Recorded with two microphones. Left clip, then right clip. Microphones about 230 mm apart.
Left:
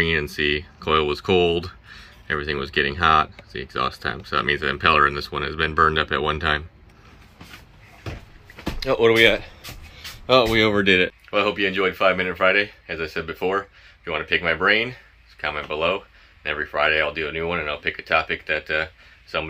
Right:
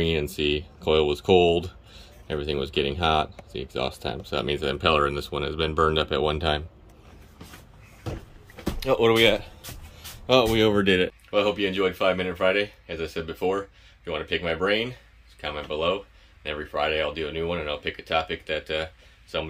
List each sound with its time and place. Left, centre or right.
0.0 s speech: left
8.7 s speech: centre